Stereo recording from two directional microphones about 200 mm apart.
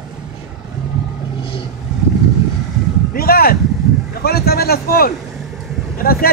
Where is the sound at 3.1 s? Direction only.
50° left (ahead or behind).